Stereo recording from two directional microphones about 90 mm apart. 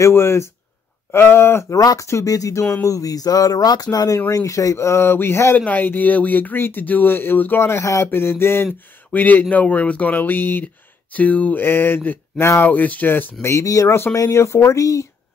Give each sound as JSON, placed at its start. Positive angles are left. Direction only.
{"t": 0.0, "sound": "speech", "side_deg": 30}
{"t": 1.8, "sound": "speech", "side_deg": 40}